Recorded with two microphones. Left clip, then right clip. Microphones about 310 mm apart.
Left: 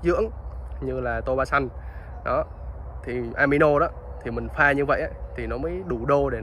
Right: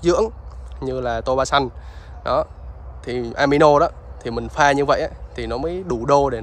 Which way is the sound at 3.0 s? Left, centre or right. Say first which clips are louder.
Right 4 dB; right.